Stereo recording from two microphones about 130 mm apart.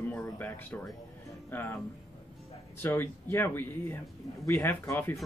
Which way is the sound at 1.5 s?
20° left (ahead or behind).